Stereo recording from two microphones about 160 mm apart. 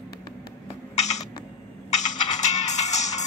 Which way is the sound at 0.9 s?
45° left (ahead or behind).